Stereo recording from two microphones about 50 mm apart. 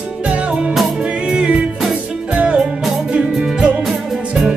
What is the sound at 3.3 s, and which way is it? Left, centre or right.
Music, centre.